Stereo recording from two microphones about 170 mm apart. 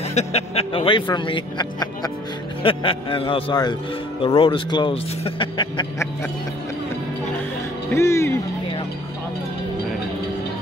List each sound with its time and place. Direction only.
0.1 s speech: 40° left (ahead or behind)
7.9 s speech: 15° left (ahead or behind)